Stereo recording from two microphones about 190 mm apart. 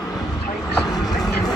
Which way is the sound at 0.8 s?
5° left (ahead or behind).